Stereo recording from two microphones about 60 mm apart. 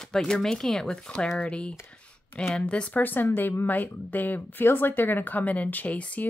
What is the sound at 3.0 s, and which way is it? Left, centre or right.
Speech, left.